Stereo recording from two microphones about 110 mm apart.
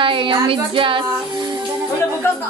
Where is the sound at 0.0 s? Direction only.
50° right (ahead or behind).